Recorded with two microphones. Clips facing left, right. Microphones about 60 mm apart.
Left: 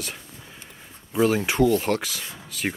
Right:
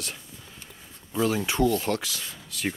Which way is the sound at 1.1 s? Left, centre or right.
Centre.